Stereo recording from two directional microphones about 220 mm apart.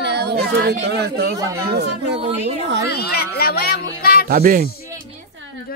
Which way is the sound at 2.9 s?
45° left (ahead or behind).